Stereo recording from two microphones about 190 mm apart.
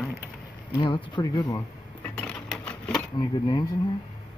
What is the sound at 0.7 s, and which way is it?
Speech, 25° left (ahead or behind).